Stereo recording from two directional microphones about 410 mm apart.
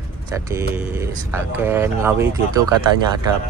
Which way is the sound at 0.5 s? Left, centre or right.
Centre.